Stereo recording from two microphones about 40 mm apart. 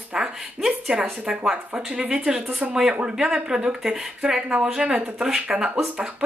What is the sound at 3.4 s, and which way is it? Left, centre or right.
Speech, centre.